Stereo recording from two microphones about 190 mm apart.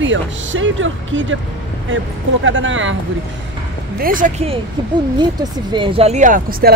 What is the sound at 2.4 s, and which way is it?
Speech, 90° right.